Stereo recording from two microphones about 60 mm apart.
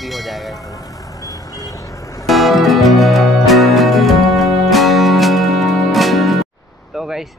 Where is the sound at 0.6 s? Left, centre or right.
Left.